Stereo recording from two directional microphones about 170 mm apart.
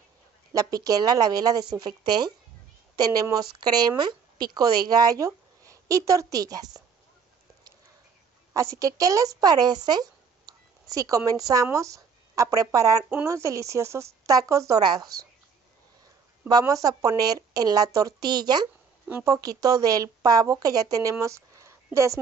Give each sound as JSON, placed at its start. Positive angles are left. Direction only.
{"t": 0.5, "sound": "speech", "side_deg": -20}
{"t": 8.5, "sound": "speech", "side_deg": -20}
{"t": 16.4, "sound": "a woman's voice", "side_deg": -20}